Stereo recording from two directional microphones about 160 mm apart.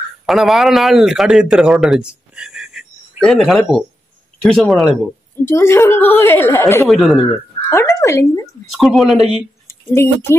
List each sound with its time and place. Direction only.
0.3 s a man's voice: centre (ahead or behind)
5.4 s a woman's voice: 15° left (ahead or behind)
6.9 s speech: centre (ahead or behind)
8.0 s speech: 20° left (ahead or behind)
8.7 s speech: centre (ahead or behind)
9.7 s speech: 15° left (ahead or behind)